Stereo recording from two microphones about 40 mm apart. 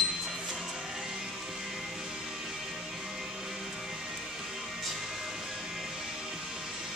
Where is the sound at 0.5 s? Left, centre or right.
Centre.